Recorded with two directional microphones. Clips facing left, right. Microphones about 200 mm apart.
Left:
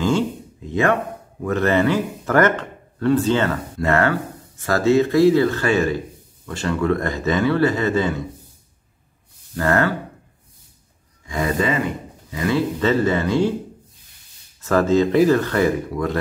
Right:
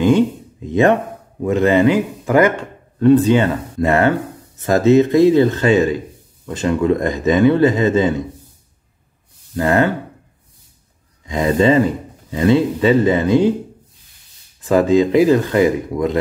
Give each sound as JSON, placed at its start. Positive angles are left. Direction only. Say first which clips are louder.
{"t": 1.4, "sound": "speech", "louder": "right 5 dB", "side_deg": -15}
{"t": 9.6, "sound": "speech", "louder": "right 4 dB", "side_deg": -15}
{"t": 11.2, "sound": "speech", "louder": "right 7 dB", "side_deg": -25}
{"t": 14.6, "sound": "speech", "louder": "right 4 dB", "side_deg": -15}